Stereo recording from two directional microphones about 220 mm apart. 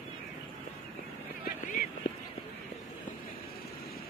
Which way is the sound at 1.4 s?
40° left (ahead or behind).